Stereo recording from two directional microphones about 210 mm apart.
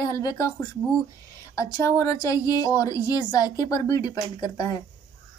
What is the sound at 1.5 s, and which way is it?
Speech, 15° left (ahead or behind).